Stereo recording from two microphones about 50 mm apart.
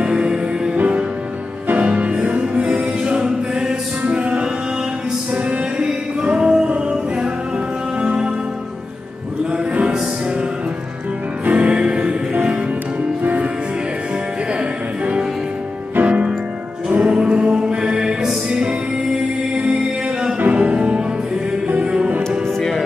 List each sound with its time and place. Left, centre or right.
0.0 s music: centre
9.5 s music: right
11.5 s music: right
16.0 s music: right
22.6 s music: centre